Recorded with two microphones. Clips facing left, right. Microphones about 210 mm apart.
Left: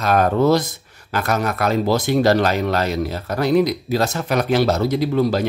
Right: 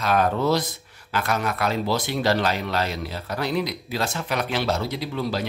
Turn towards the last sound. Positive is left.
turn(degrees=45)  # may be behind; listen again after turning